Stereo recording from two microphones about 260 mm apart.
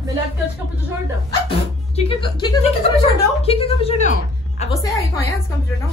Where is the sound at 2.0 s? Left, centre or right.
Left.